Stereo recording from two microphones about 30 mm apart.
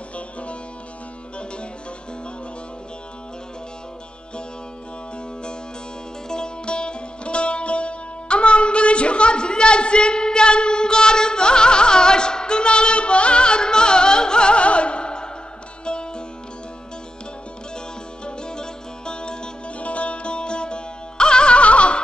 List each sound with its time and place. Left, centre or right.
0.1 s music: left
6.2 s music: left
18.2 s music: left
19.8 s music: left